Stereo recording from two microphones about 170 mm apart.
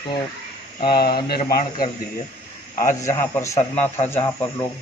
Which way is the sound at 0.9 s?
65° left (ahead or behind).